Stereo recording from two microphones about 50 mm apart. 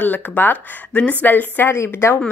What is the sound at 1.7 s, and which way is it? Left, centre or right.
Speech, left.